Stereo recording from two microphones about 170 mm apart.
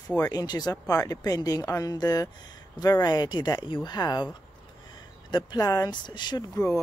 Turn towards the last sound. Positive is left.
turn(degrees=25)  # may be behind; listen again after turning